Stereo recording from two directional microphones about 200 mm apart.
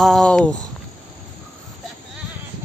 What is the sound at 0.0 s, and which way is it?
Speech, 5° left (ahead or behind).